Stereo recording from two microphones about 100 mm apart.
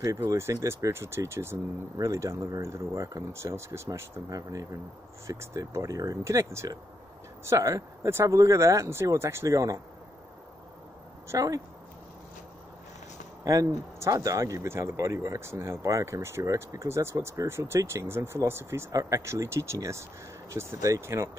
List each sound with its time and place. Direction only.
0.0 s speech: 30° right (ahead or behind)
11.2 s speech: 35° right (ahead or behind)
13.4 s speech: 35° right (ahead or behind)